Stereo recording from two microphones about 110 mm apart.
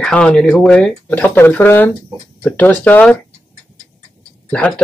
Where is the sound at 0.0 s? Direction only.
5° left (ahead or behind).